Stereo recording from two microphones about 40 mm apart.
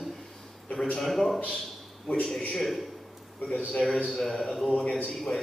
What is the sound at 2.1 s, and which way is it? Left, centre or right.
Speech, left.